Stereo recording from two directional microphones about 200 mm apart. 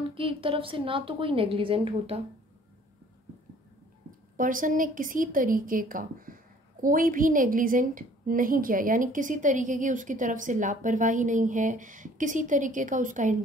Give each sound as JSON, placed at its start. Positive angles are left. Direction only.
{"t": 0.1, "sound": "a woman's voice", "side_deg": -25}
{"t": 4.4, "sound": "speech", "side_deg": -45}